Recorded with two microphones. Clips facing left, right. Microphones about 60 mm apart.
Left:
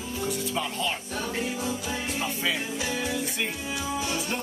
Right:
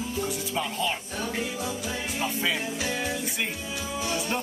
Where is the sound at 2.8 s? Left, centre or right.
Right.